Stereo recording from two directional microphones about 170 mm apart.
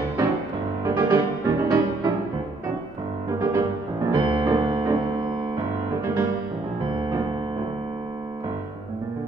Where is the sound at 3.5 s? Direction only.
20° right (ahead or behind).